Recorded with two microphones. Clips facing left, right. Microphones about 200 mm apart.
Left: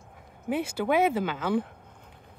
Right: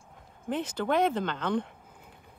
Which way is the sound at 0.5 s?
10° left (ahead or behind).